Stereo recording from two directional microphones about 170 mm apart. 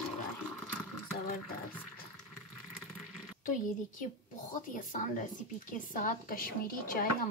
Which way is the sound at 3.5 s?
50° left (ahead or behind).